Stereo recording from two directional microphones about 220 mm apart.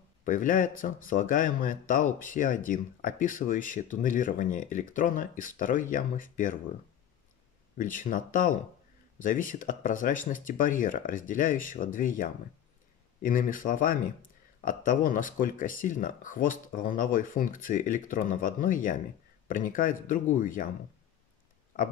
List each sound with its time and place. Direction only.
0.2 s speech: 35° left (ahead or behind)
7.7 s speech: 35° left (ahead or behind)